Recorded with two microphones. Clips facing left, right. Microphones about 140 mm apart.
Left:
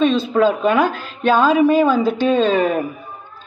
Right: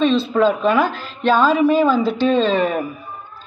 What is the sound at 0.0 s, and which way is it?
A woman's voice, 45° left (ahead or behind).